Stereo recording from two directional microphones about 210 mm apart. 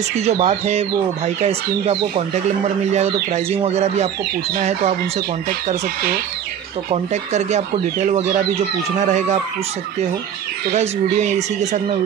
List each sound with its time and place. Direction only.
0.2 s speech: 30° right (ahead or behind)
6.9 s speech: 35° right (ahead or behind)
10.7 s speech: 35° right (ahead or behind)